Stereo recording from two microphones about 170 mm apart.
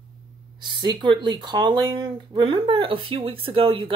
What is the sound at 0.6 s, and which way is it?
Speech, 25° right (ahead or behind).